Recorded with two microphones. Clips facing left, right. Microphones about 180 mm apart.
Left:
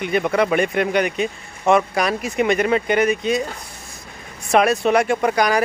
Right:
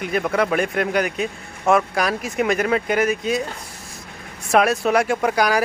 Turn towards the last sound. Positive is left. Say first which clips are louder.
# left 1 dB
turn(degrees=-5)  # may be behind; listen again after turning